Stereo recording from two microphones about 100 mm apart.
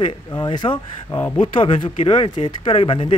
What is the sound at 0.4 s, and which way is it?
Speech, 50° left (ahead or behind).